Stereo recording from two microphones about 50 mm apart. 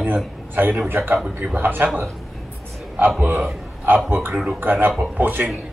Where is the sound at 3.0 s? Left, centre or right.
Right.